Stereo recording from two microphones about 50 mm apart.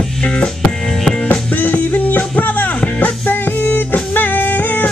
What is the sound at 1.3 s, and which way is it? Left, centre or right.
Music, left.